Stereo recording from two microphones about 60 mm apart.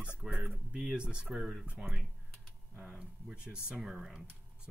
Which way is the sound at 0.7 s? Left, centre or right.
Centre.